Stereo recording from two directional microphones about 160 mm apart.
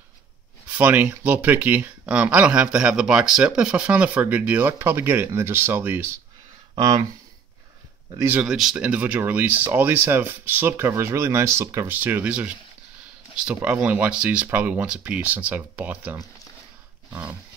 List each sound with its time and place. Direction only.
0.7 s speech: 10° right (ahead or behind)
6.7 s speech: 25° right (ahead or behind)
8.2 s speech: 10° right (ahead or behind)